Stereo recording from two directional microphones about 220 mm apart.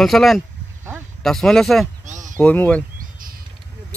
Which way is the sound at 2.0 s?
35° right (ahead or behind).